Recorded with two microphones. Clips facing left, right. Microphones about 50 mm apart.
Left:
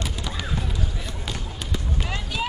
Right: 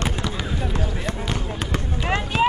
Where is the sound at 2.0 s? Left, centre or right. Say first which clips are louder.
Right 11 dB; right.